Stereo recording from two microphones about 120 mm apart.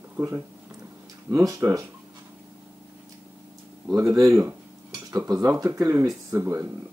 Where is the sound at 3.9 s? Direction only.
25° right (ahead or behind).